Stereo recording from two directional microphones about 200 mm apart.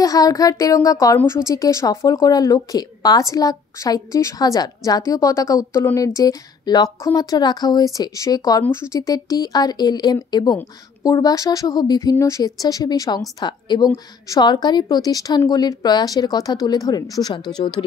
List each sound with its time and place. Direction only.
0.0 s a woman's voice: 15° left (ahead or behind)